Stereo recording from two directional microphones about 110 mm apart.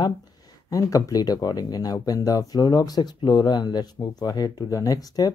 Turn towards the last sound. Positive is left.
turn(degrees=35)  # may be behind; listen again after turning